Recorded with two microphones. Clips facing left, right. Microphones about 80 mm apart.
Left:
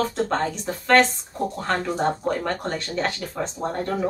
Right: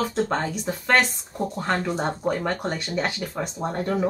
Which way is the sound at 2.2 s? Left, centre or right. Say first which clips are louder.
Even; centre.